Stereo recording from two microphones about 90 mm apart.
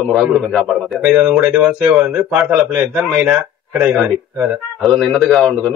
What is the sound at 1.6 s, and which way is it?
Speech, 15° right (ahead or behind).